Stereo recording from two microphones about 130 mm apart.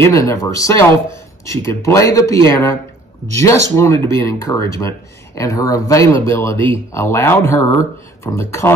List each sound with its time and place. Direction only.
0.0 s speech: 25° left (ahead or behind)